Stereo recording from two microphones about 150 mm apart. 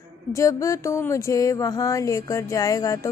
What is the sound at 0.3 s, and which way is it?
Speech, 20° left (ahead or behind).